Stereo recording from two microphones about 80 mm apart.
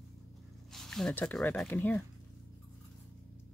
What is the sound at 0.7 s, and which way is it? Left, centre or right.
Zipper, centre.